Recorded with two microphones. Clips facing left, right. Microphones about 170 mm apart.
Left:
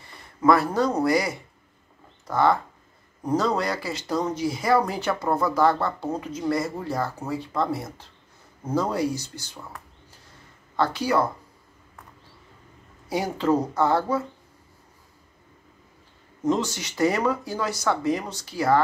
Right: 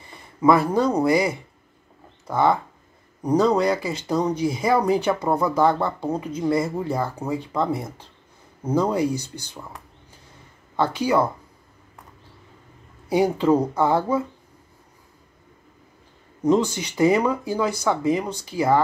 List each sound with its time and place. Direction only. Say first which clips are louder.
0.4 s speech: right 2 dB; 15° right (ahead or behind)
9.1 s speech: right 4 dB; 55° right (ahead or behind)
13.1 s speech: right 5 dB; 15° right (ahead or behind)
16.4 s speech: right 5 dB; 15° right (ahead or behind)